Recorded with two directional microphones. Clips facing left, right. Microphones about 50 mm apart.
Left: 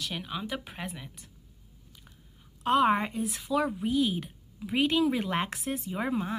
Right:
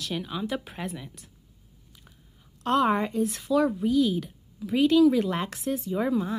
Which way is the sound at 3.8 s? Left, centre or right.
Left.